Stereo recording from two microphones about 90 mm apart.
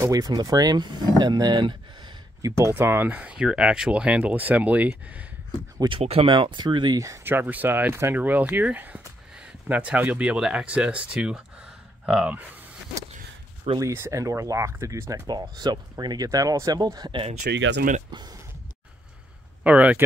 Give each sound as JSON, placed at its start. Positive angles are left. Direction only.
{"t": 0.0, "sound": "speech", "side_deg": -40}
{"t": 2.4, "sound": "speech", "side_deg": -35}
{"t": 5.9, "sound": "speech", "side_deg": -80}
{"t": 7.2, "sound": "speech", "side_deg": -20}
{"t": 13.7, "sound": "speech", "side_deg": -30}
{"t": 15.2, "sound": "speech", "side_deg": -50}
{"t": 18.1, "sound": "speech", "side_deg": -50}
{"t": 19.6, "sound": "speech", "side_deg": -15}